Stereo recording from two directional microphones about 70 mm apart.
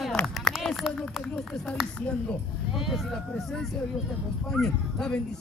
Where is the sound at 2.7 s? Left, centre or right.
Centre.